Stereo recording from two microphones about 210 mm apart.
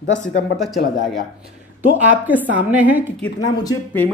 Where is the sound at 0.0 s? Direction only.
35° left (ahead or behind).